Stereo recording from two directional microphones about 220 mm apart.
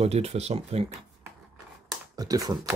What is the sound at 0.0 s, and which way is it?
Speech, 30° right (ahead or behind).